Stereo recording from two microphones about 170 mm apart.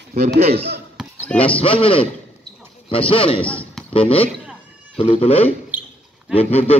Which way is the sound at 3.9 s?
35° left (ahead or behind).